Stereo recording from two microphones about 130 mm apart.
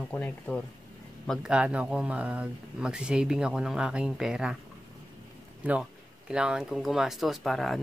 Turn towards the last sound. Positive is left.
turn(degrees=0)  # may be behind; listen again after turning